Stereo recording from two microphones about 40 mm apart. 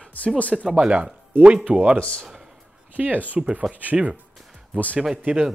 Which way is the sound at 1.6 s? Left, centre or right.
Right.